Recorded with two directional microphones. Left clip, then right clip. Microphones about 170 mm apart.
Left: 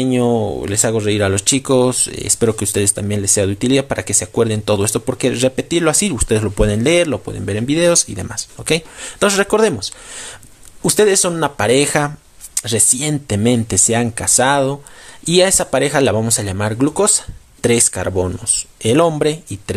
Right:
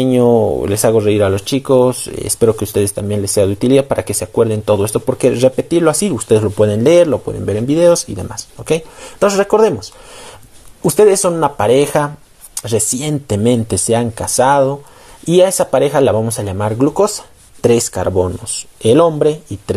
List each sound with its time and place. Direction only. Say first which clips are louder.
0.0 s speech: right 5 dB; centre (ahead or behind)
4.4 s speech: right 4 dB; 15° left (ahead or behind)
5.1 s speech: right 6 dB; centre (ahead or behind)
11.2 s speech: right 3 dB; 10° left (ahead or behind)
18.9 s speech: right 1 dB; 10° left (ahead or behind)